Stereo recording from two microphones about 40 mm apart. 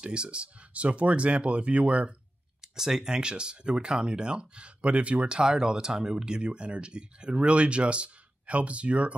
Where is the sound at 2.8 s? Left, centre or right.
Centre; by 5.4 s right.